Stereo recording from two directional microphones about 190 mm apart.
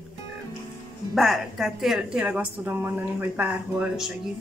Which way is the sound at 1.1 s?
Centre (ahead or behind).